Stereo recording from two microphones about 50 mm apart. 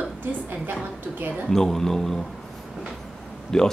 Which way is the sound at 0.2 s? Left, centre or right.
Right.